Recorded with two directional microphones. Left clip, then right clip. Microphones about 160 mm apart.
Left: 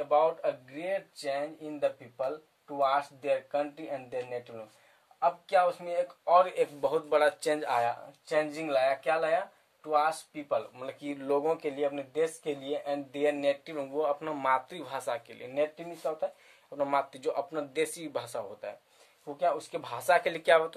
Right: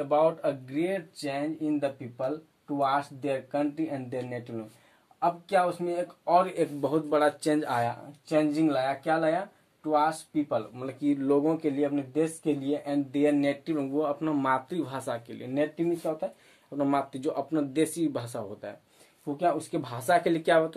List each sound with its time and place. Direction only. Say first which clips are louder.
0.0 s speech: right 2 dB; 5° left (ahead or behind)